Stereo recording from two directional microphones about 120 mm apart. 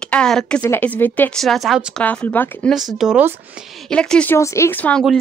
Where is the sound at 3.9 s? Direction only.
10° left (ahead or behind).